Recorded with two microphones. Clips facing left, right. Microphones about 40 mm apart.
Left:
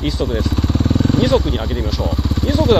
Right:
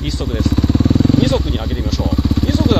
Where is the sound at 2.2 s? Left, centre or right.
Centre.